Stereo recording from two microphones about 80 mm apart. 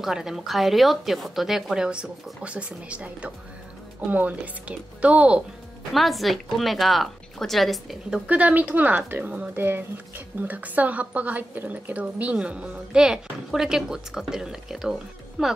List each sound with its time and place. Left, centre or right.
0.0 s a woman's voice: centre
5.9 s speech: centre
8.3 s a woman's voice: centre